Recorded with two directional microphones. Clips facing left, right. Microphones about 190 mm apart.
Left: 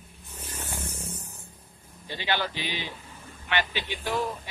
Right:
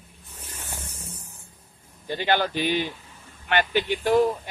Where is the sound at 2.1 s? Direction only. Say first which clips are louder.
Right 6 dB; 50° right (ahead or behind).